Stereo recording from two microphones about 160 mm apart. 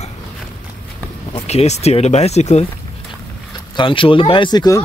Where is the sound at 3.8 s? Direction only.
35° left (ahead or behind).